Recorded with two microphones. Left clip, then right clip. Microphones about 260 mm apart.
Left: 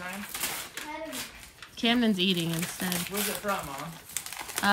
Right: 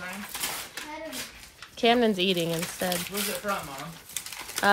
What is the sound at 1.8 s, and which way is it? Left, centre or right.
Speech, centre.